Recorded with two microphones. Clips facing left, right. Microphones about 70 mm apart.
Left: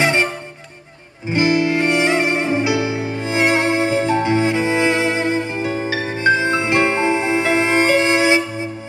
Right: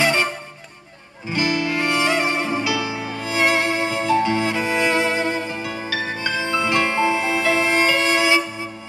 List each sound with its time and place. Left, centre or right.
0.0 s music: left
1.3 s music: left